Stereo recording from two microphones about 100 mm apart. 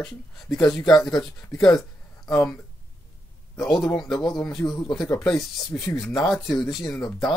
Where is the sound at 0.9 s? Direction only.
40° left (ahead or behind).